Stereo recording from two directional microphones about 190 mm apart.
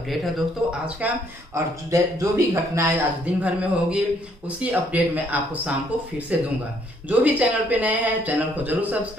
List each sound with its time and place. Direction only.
0.1 s speech: 5° right (ahead or behind)
1.5 s speech: 15° right (ahead or behind)